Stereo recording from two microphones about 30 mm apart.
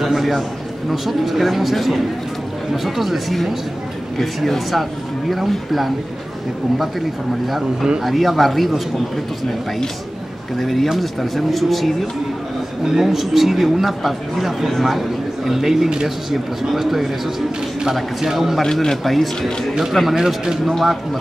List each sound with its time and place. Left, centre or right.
0.0 s a man's voice: centre
5.7 s a man's voice: centre
8.0 s a man's voice: centre
10.6 s a man's voice: centre
12.8 s speech: centre
18.2 s speech: centre
18.6 s a man's voice: centre
19.0 s a man's voice: centre
20.2 s a man's voice: centre
20.8 s speech: centre